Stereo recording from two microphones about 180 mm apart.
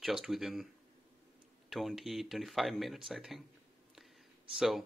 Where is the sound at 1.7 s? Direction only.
Centre (ahead or behind).